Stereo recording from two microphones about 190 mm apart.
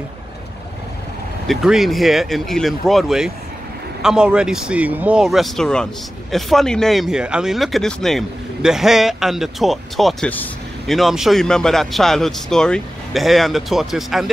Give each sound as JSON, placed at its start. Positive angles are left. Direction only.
{"t": 1.5, "sound": "speech", "side_deg": 0}